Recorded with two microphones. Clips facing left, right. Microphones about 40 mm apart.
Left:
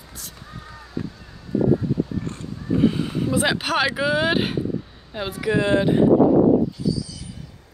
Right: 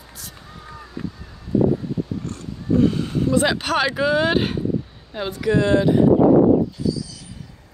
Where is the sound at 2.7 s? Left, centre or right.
Centre.